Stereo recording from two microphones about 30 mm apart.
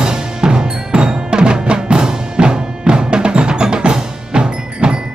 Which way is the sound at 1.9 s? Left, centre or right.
Right.